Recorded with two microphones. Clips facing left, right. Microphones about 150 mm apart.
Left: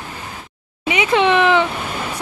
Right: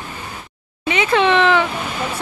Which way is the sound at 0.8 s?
15° left (ahead or behind).